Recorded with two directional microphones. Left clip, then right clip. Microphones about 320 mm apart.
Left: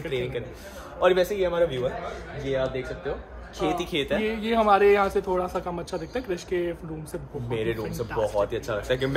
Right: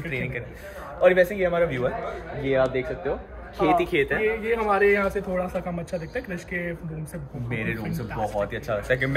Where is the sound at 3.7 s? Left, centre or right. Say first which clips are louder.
Right 4 dB; centre.